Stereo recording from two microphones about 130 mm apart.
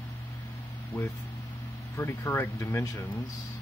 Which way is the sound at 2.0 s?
15° left (ahead or behind).